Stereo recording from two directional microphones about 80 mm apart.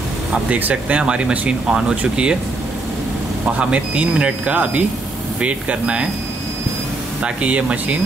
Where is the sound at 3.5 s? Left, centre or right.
Centre.